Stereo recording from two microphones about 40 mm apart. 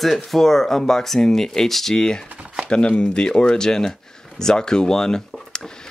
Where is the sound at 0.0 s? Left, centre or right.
Centre.